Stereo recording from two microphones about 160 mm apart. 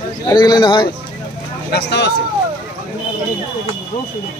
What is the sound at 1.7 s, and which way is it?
Speech, 90° left.